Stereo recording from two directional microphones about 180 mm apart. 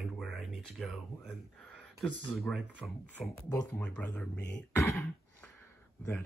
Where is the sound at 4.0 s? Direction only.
5° left (ahead or behind).